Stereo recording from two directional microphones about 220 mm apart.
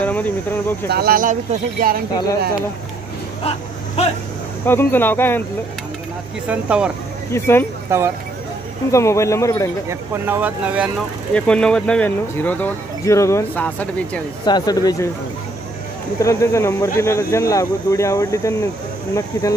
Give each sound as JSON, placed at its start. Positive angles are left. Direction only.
{"t": 0.0, "sound": "speech", "side_deg": 5}
{"t": 0.8, "sound": "speech", "side_deg": -45}
{"t": 3.4, "sound": "speech", "side_deg": 30}
{"t": 4.6, "sound": "speech", "side_deg": 10}
{"t": 6.4, "sound": "speech", "side_deg": -5}
{"t": 7.3, "sound": "speech", "side_deg": 10}
{"t": 7.9, "sound": "speech", "side_deg": -10}
{"t": 8.9, "sound": "speech", "side_deg": 15}
{"t": 9.8, "sound": "speech", "side_deg": -10}
{"t": 14.4, "sound": "speech", "side_deg": 20}
{"t": 16.2, "sound": "speech", "side_deg": 15}